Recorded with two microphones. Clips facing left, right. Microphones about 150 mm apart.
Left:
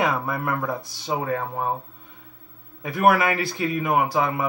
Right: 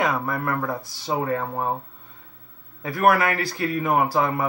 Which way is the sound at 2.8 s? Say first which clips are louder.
Even; 20° left (ahead or behind).